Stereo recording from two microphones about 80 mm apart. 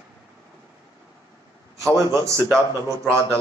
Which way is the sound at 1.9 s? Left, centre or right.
Right.